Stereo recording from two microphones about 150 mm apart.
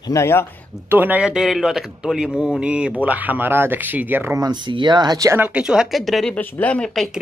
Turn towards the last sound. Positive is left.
turn(degrees=5)  # may be behind; listen again after turning